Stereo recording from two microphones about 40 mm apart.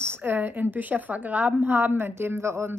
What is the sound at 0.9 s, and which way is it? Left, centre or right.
A woman's voice, right.